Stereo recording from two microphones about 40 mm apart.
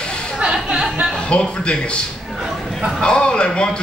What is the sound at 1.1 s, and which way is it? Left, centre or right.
Speech, left.